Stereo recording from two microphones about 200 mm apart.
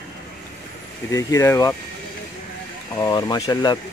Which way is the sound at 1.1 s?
15° left (ahead or behind).